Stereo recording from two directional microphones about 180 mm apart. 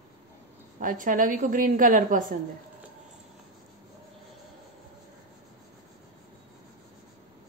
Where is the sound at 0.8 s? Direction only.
50° right (ahead or behind).